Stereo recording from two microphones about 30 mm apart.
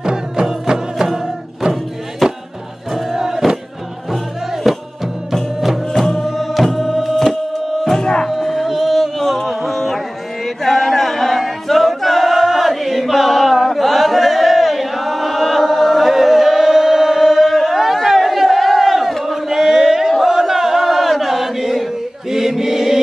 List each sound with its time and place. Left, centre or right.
0.0 s music: right; by 2.4 s centre
2.9 s crowd: centre
4.6 s music: centre
8.0 s music: left
8.3 s a sound: centre
9.2 s a sound: centre
9.5 s carnatic music: centre
12.0 s choir: centre
17.3 s singing: centre
17.6 s chatter: centre
18.0 s battle cry: centre
20.2 s chant: centre
22.3 s choir: centre